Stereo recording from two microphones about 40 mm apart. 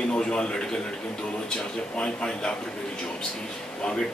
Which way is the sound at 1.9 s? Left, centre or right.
Left.